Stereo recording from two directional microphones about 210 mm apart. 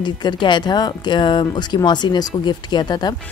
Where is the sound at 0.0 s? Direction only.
20° left (ahead or behind).